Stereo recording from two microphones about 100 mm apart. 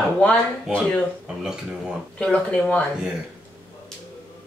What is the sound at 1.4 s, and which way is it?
Speech, 5° right (ahead or behind).